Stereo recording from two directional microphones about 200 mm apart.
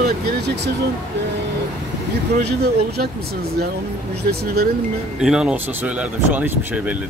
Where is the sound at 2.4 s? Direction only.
55° right (ahead or behind).